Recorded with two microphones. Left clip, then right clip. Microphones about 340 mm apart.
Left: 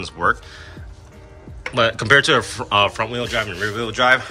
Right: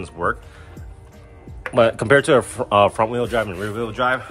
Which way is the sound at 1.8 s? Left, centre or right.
Centre.